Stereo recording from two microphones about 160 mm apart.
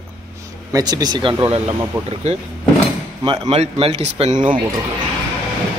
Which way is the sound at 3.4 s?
40° right (ahead or behind).